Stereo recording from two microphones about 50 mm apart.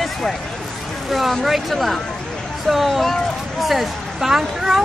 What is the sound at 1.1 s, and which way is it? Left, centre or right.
A woman's voice, centre.